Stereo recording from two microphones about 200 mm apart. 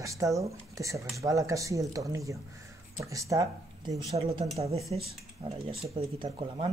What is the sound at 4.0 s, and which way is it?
Speech, 30° right (ahead or behind).